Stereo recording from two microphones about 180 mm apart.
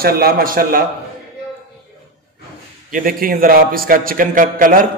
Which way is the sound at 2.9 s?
50° right (ahead or behind).